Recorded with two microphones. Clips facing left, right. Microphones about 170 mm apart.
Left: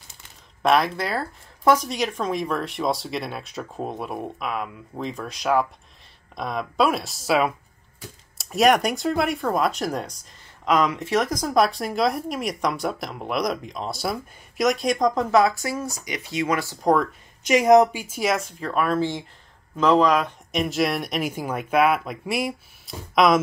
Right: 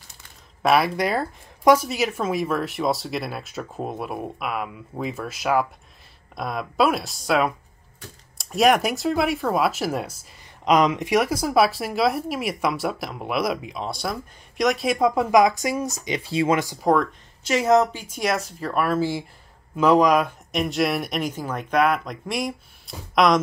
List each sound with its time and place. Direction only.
0.6 s speech: 5° right (ahead or behind)
10.6 s speech: 20° right (ahead or behind)
16.8 s speech: centre (ahead or behind)
17.4 s speech: 15° left (ahead or behind); by 20.3 s 10° right (ahead or behind)
20.5 s speech: centre (ahead or behind)